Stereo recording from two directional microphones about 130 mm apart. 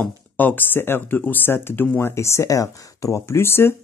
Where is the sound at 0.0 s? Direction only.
15° left (ahead or behind).